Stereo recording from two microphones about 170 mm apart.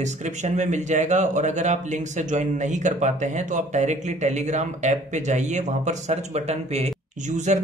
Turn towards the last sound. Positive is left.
turn(degrees=-45)  # may be behind; listen again after turning